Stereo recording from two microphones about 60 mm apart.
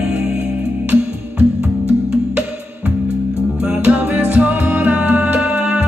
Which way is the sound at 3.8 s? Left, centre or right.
Right.